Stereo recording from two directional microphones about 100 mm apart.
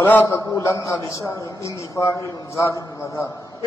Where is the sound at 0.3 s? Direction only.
30° left (ahead or behind).